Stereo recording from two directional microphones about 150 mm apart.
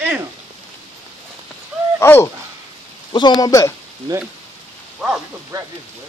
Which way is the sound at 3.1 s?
30° left (ahead or behind).